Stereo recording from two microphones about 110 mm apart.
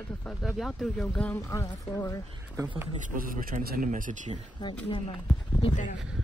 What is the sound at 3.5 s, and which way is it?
Speech, 90° right.